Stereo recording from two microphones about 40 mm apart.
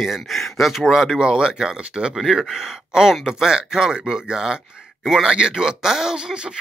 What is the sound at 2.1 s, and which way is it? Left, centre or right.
Speech, centre.